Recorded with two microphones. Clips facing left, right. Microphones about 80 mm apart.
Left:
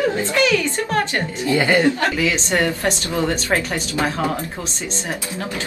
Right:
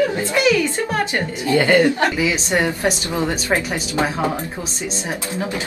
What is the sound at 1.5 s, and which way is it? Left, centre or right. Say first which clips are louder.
Speech: right 2 dB; left.